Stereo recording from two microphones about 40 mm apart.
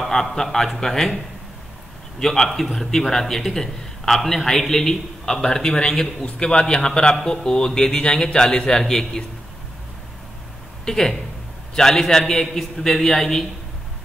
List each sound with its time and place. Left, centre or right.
0.1 s a man's voice: centre
2.1 s a man's voice: centre
10.9 s a man's voice: centre